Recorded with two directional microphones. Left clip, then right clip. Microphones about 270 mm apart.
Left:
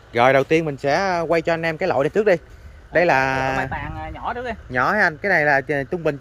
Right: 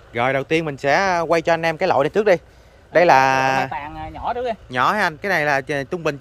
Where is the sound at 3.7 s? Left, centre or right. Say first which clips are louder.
Right 1 dB; right.